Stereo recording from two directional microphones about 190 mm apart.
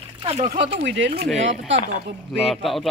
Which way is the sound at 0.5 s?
60° right (ahead or behind).